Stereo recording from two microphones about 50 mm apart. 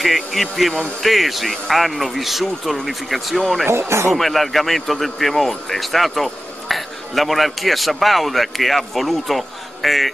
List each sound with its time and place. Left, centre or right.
0.0 s speech: centre
3.6 s speech: right
4.1 s speech: centre